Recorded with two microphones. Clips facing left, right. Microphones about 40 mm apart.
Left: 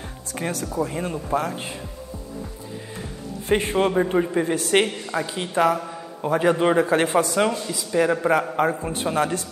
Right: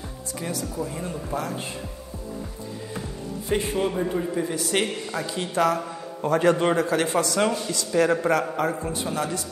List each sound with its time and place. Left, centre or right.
0.4 s speech: left
0.7 s a man's voice: left
3.4 s a man's voice: left
5.8 s a man's voice: centre
6.8 s a man's voice: left
7.3 s a man's voice: centre
8.6 s a man's voice: left